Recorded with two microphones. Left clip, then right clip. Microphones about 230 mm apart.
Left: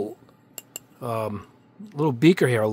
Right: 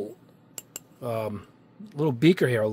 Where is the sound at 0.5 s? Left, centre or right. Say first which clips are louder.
Left 2 dB; centre.